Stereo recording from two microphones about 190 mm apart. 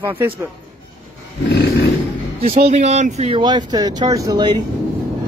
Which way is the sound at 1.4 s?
55° left (ahead or behind).